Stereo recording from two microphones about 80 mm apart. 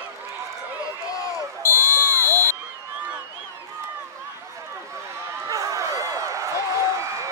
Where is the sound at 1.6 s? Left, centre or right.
Left.